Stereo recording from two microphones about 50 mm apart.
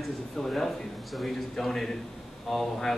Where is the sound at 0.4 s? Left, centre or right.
Centre.